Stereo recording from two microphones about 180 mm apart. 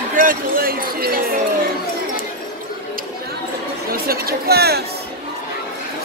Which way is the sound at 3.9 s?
55° right (ahead or behind).